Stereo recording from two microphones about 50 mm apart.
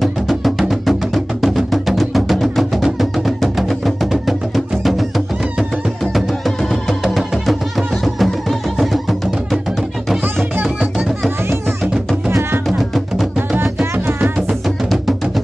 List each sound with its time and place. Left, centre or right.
0.0 s music: centre
10.2 s music: right
12.6 s music: centre
13.9 s music: right
14.5 s music: centre